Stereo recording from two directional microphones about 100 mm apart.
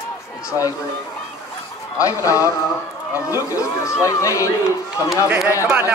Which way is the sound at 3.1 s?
35° left (ahead or behind).